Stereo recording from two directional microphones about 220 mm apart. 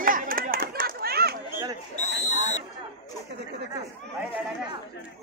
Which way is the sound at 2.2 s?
30° left (ahead or behind).